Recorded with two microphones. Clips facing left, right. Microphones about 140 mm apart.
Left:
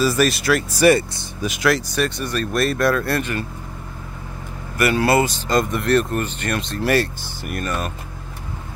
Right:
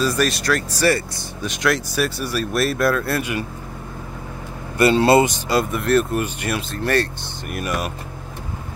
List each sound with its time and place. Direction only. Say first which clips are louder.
0.0 s speech: left 2 dB; 5° left (ahead or behind)
0.8 s speech: left 5 dB; 20° left (ahead or behind)
1.4 s speech: left 2 dB; 5° left (ahead or behind)
4.7 s speech: right 3 dB; 25° right (ahead or behind); by 6.8 s 10° right (ahead or behind)
6.8 s speech: left 2 dB; 5° left (ahead or behind)
7.5 s speech: right 1 dB; 10° right (ahead or behind)